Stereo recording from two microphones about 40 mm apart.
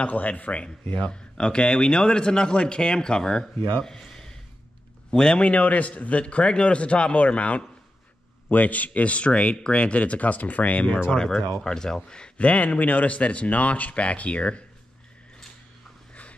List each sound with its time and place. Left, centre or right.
0.0 s speech: left
1.0 s a man's voice: left
3.8 s a sound: centre
5.1 s a man's voice: left
5.5 s speech: left
8.5 s speech: left
11.1 s a man's voice: centre
12.4 s speech: left